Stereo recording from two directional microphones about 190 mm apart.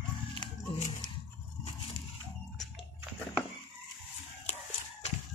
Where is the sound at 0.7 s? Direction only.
35° left (ahead or behind).